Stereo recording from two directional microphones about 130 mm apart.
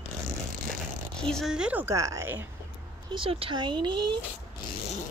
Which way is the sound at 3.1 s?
45° right (ahead or behind).